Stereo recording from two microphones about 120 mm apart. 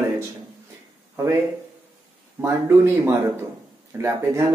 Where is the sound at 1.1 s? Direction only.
20° right (ahead or behind).